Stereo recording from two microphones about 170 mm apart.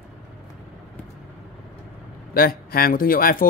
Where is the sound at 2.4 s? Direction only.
60° left (ahead or behind).